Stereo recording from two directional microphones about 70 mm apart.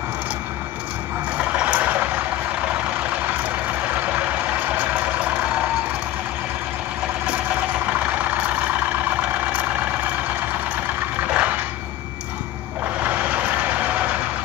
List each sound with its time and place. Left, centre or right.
1.4 s vehicle: centre
3.6 s vehicle: right
9.2 s vehicle: right
11.2 s a sound: centre
12.8 s vehicle: right